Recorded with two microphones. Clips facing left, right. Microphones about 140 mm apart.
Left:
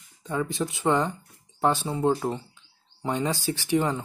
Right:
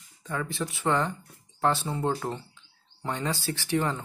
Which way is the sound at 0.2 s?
20° left (ahead or behind).